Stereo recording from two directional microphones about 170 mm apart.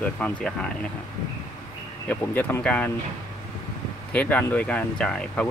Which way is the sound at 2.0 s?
10° left (ahead or behind).